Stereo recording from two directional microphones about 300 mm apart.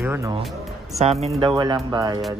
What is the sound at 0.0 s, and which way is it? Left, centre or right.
Speech, centre.